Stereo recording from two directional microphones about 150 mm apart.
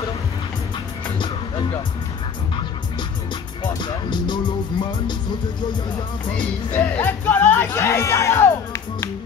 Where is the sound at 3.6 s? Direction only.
30° left (ahead or behind).